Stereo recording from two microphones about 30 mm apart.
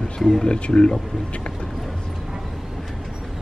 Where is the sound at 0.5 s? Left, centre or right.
Left.